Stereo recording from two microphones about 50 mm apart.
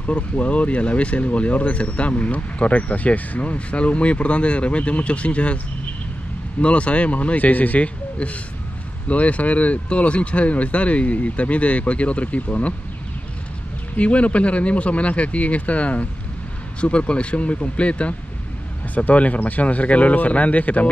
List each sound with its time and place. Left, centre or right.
0.0 s speech: left
6.6 s speech: left
13.9 s speech: left